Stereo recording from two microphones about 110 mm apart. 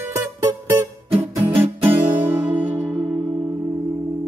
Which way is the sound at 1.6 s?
20° right (ahead or behind).